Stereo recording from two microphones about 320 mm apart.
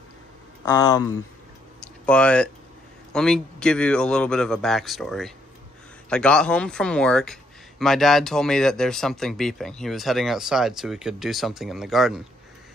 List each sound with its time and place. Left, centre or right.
0.7 s speech: centre
1.8 s a sound: centre
3.1 s speech: centre